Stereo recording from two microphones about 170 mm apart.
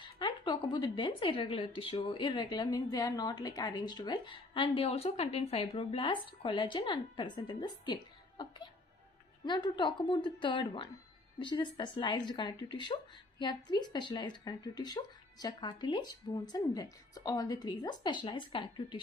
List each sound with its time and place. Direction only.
0.0 s a woman's voice: 25° left (ahead or behind)